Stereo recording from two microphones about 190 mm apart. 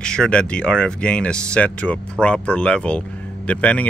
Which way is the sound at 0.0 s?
5° left (ahead or behind).